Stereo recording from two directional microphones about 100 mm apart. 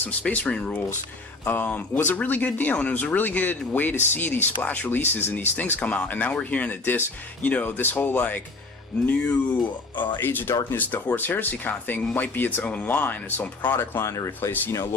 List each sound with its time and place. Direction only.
0.2 s speech: 15° left (ahead or behind); by 14.5 s 30° left (ahead or behind)
14.5 s speech: 20° left (ahead or behind)